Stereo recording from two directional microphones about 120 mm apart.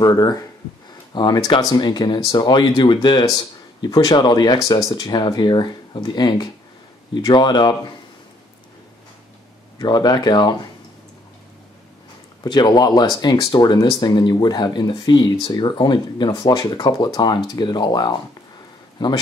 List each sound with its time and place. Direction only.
0.0 s speech: 35° left (ahead or behind)
9.8 s speech: 35° left (ahead or behind)
12.4 s speech: 35° left (ahead or behind)